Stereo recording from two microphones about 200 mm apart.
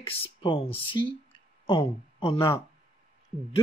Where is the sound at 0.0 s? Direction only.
30° left (ahead or behind).